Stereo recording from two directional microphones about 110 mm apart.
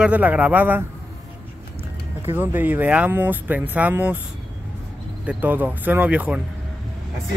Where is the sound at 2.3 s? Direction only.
20° right (ahead or behind).